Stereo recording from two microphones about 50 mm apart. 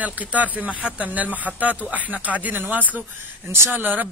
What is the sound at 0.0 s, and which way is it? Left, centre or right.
Speech, right.